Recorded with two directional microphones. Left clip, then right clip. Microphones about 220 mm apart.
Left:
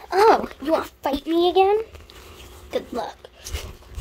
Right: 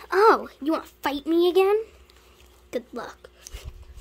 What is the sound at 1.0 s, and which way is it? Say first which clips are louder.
Speech: left 2 dB; 30° right (ahead or behind).